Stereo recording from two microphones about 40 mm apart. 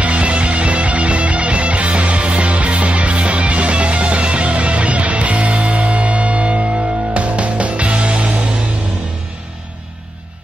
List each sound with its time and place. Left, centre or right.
0.0 s music: right